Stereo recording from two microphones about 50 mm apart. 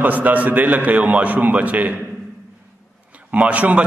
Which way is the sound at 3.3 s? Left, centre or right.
Right.